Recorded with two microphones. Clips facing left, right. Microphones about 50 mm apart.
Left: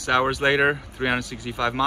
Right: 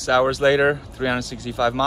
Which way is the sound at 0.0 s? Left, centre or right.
Centre.